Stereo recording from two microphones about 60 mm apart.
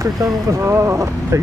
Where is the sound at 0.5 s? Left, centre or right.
Right.